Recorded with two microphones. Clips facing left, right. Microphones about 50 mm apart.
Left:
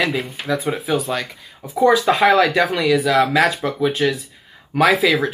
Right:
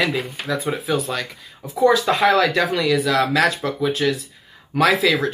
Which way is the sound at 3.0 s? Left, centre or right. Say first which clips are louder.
Left 2 dB; centre.